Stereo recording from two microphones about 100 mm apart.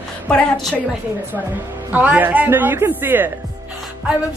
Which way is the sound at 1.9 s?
15° right (ahead or behind).